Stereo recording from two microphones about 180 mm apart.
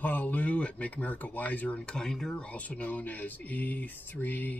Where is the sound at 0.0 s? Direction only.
10° left (ahead or behind).